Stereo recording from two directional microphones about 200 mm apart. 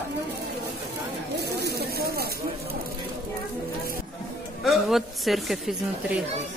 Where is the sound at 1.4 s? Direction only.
55° right (ahead or behind).